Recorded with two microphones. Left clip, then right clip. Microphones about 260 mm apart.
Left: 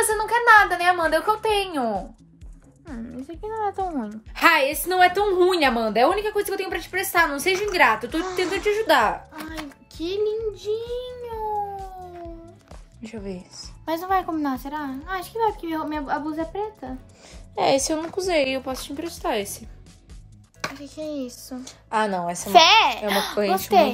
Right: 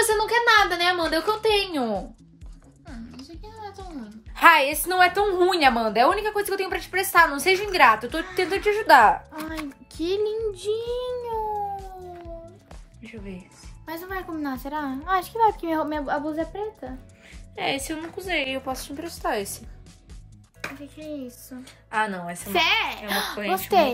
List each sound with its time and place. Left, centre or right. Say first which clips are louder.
0.1 s speech: left 6 dB; centre
2.9 s music: left 5 dB; centre
4.4 s a woman's voice: right 2 dB; centre
9.9 s a child's voice: even; right
11.2 s cat: even; centre
13.0 s speech: left 6 dB; centre
17.8 s a woman's voice: left 6 dB; centre
20.8 s a woman's voice: left 5 dB; centre